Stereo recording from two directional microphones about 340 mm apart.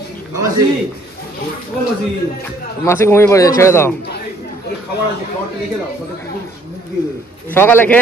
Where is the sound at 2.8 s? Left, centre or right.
Centre.